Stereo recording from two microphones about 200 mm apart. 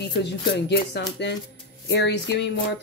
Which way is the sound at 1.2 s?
60° left (ahead or behind).